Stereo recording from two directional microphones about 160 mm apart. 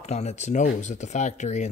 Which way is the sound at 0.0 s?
45° left (ahead or behind).